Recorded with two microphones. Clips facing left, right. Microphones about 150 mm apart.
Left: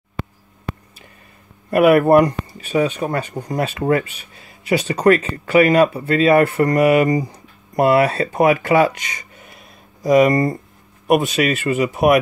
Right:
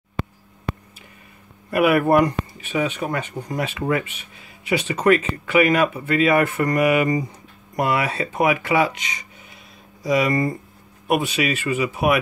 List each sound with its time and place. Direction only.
1.7 s speech: 45° left (ahead or behind)